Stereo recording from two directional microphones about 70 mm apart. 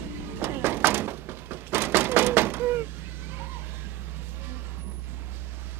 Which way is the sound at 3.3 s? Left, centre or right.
Right.